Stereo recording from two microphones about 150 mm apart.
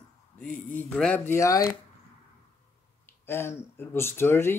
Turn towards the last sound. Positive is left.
turn(degrees=15)  # may be behind; listen again after turning